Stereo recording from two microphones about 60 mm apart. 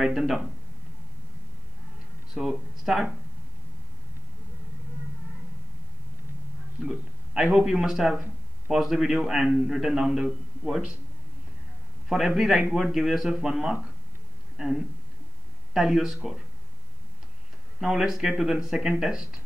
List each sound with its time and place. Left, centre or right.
0.0 s a man's voice: centre
2.3 s a man's voice: centre
6.8 s a sound: centre
7.5 s a man's voice: centre
12.1 s a man's voice: centre
15.7 s a man's voice: centre
17.7 s a man's voice: centre